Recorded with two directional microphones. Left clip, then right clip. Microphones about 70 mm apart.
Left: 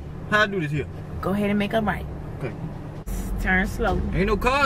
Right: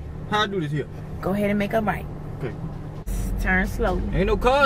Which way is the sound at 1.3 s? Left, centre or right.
Right.